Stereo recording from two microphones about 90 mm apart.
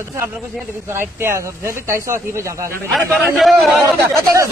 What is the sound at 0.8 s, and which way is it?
Speech, 25° right (ahead or behind).